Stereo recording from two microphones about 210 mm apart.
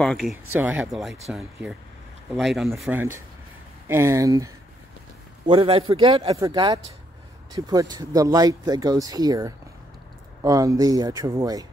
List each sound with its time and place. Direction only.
0.0 s speech: centre (ahead or behind); by 4.5 s 15° right (ahead or behind)
5.5 s speech: 25° right (ahead or behind)